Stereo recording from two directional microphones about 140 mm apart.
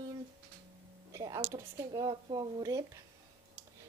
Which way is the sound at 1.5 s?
25° right (ahead or behind).